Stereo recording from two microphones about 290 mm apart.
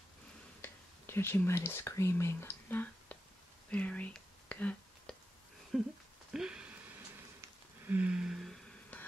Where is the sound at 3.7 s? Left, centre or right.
Centre.